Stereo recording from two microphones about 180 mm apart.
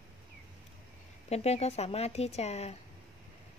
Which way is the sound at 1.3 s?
35° left (ahead or behind).